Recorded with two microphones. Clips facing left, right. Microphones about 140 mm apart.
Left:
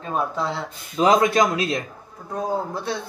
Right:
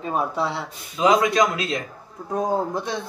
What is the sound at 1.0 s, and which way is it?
Speech, 35° left (ahead or behind).